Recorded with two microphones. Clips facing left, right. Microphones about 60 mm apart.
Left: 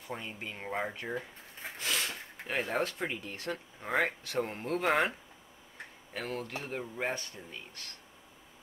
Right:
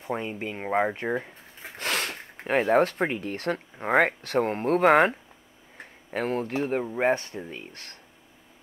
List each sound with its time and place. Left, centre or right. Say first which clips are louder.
0.0 s speech: right 10 dB; right
1.8 s speech: right 6 dB; right
6.1 s speech: right 10 dB; right